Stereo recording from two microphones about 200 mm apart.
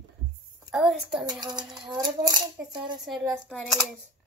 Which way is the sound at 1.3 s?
20° right (ahead or behind).